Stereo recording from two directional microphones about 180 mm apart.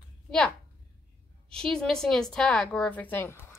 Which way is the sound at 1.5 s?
Centre (ahead or behind).